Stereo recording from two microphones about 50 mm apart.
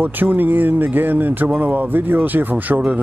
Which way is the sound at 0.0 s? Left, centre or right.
Right.